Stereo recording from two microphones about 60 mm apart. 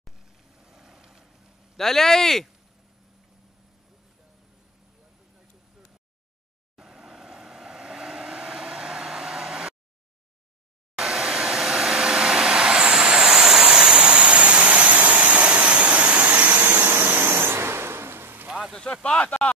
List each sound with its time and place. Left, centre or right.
0.6 s vehicle: centre
1.8 s speech: centre
6.8 s vehicle: centre
11.0 s vacuum cleaner: centre
13.9 s vehicle: right
19.0 s a sound: centre